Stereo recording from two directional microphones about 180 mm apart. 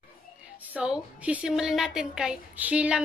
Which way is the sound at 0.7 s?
5° right (ahead or behind).